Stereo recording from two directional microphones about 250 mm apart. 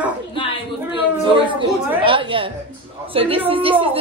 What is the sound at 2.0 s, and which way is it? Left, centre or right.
A woman's voice, centre.